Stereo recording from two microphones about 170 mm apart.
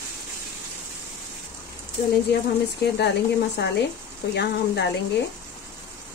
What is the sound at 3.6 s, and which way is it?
Speech, 90° left.